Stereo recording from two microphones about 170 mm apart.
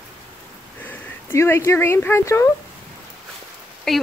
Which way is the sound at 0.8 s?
15° left (ahead or behind).